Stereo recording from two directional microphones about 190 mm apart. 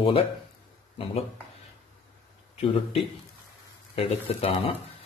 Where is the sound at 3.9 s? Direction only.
30° left (ahead or behind).